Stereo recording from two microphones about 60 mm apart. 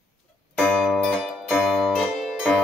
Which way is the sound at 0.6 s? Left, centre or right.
Centre.